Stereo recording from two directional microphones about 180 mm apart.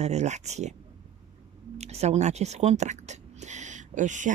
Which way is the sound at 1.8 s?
35° right (ahead or behind).